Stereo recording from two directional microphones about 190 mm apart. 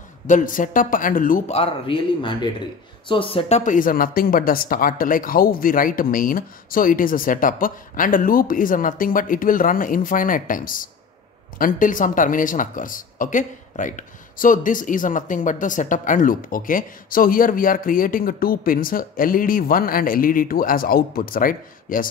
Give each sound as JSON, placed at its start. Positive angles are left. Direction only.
{"t": 0.3, "sound": "speech", "side_deg": 45}
{"t": 1.5, "sound": "a man's voice", "side_deg": 30}